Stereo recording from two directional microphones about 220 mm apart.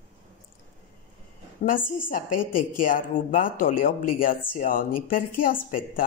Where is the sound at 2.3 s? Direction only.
90° left.